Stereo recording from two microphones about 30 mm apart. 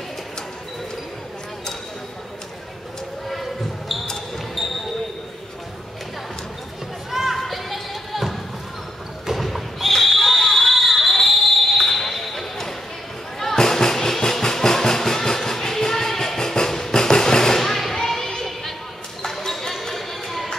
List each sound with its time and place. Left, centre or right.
3.9 s basketball bounce: centre
7.1 s children playing: centre
7.3 s music: centre
9.3 s basketball bounce: centre
13.6 s train: centre
14.4 s music: centre
19.2 s basketball bounce: centre